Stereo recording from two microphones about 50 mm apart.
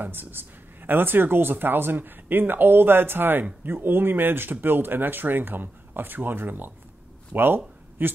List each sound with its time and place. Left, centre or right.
0.0 s speech: right